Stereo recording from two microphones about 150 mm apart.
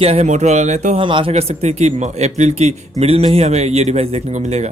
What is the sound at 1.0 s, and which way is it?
Speech, 35° right (ahead or behind).